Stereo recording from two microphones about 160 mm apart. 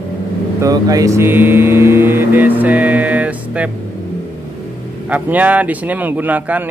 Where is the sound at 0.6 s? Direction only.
25° right (ahead or behind).